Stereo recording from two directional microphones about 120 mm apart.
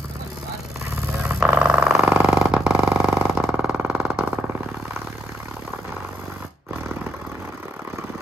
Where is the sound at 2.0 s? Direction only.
20° right (ahead or behind).